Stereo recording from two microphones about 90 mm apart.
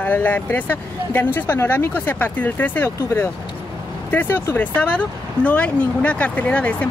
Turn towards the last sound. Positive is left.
turn(degrees=15)  # may be behind; listen again after turning